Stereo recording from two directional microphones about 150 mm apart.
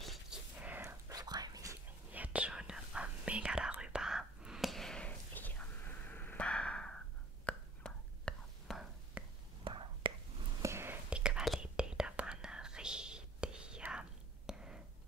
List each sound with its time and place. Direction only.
0.0 s whispering: centre (ahead or behind); by 1.8 s 25° right (ahead or behind)
2.1 s whispering: 10° right (ahead or behind)
9.2 s whispering: 10° right (ahead or behind)
9.7 s whispering: 35° right (ahead or behind)
10.6 s whispering: 15° right (ahead or behind)